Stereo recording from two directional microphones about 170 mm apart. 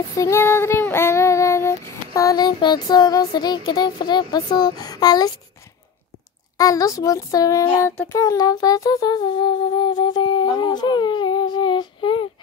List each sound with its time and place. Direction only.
0.2 s child singing: 15° left (ahead or behind)
6.6 s humming: 20° left (ahead or behind)